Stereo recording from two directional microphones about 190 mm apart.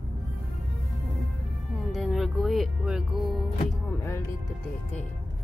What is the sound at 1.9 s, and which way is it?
Speech, centre (ahead or behind).